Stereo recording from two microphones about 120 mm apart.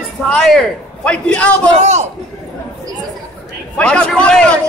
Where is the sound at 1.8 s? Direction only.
65° right (ahead or behind).